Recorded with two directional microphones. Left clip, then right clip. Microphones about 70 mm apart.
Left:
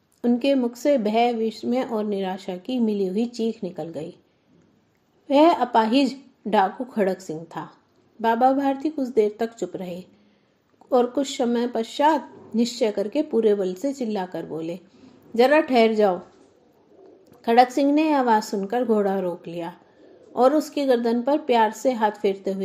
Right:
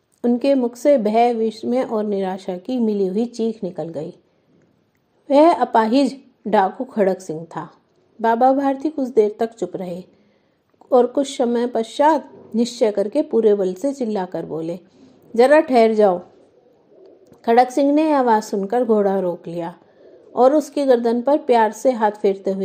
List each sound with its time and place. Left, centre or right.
0.2 s speech: right
5.3 s a woman's voice: right
17.4 s a sound: right
17.7 s a woman's voice: right